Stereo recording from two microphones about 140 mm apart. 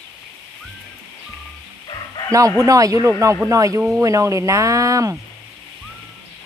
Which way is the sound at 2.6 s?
25° right (ahead or behind).